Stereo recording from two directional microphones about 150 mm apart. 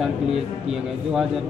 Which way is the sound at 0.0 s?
5° right (ahead or behind).